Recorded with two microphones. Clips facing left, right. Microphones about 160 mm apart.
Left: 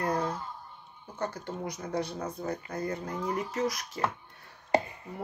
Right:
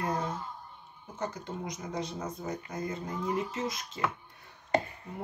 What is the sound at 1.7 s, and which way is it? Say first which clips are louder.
Speech: left 5 dB; 65° left (ahead or behind).